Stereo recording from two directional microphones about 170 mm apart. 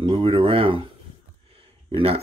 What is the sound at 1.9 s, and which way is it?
Speech, 35° right (ahead or behind).